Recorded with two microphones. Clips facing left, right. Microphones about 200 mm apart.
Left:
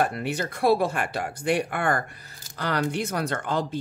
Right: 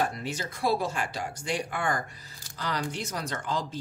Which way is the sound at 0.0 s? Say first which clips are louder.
Left 5 dB; 60° left (ahead or behind).